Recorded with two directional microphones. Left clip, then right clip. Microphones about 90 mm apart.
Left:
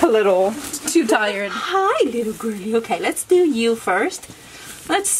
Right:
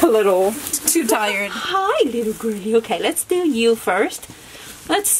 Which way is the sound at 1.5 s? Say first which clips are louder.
Left 1 dB; 15° right (ahead or behind).